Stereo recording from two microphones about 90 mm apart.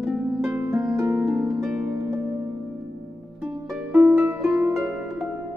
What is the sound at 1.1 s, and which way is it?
Harp, 10° right (ahead or behind).